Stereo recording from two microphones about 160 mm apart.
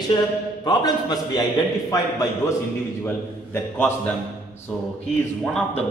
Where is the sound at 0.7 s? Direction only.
25° left (ahead or behind).